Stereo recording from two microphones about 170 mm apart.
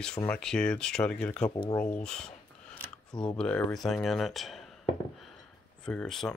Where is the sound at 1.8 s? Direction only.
5° left (ahead or behind).